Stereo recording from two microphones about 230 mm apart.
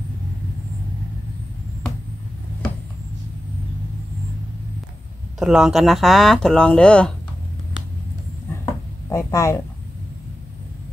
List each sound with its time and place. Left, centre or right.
5.4 s speech: centre
9.1 s speech: centre